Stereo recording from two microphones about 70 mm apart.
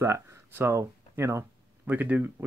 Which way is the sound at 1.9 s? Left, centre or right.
Right.